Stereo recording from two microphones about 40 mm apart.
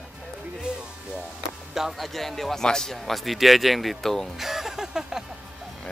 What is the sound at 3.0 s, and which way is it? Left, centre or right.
Speech, centre.